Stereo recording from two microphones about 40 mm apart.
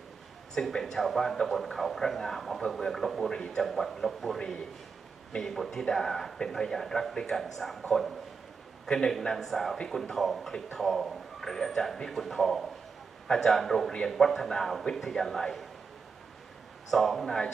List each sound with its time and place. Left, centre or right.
0.6 s speech: left
0.9 s a man's voice: centre
3.3 s a man's voice: centre
3.6 s a man's voice: centre
5.4 s a man's voice: centre
16.9 s a man's voice: centre